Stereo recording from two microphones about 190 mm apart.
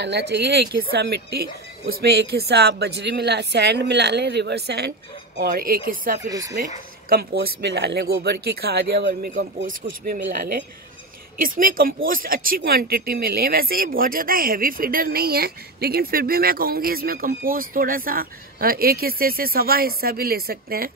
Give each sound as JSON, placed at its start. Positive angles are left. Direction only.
{"t": 0.0, "sound": "speech", "side_deg": -65}
{"t": 6.2, "sound": "speech", "side_deg": -20}
{"t": 7.1, "sound": "speech", "side_deg": -55}
{"t": 9.3, "sound": "speech", "side_deg": -50}